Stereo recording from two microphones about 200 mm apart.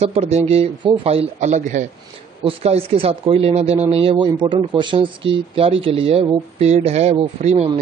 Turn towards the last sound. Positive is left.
turn(degrees=-35)  # may be behind; listen again after turning